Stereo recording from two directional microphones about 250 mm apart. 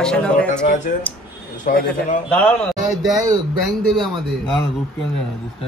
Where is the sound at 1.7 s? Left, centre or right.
Left.